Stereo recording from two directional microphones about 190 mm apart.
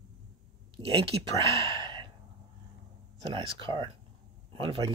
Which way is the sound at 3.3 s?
25° right (ahead or behind).